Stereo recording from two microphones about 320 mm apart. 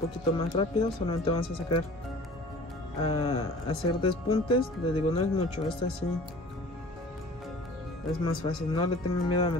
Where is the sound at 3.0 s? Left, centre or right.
Centre.